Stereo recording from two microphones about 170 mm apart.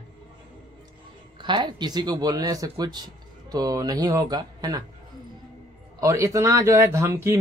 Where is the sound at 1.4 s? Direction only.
25° right (ahead or behind).